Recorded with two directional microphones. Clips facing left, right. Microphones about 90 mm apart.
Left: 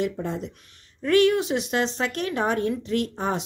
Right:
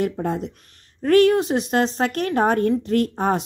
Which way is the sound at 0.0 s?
50° right (ahead or behind).